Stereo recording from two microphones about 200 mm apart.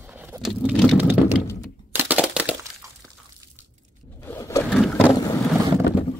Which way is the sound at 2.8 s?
15° right (ahead or behind).